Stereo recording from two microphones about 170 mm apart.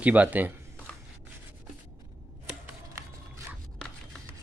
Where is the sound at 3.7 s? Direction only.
5° left (ahead or behind).